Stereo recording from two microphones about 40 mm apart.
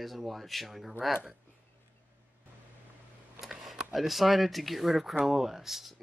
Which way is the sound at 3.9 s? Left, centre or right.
Centre.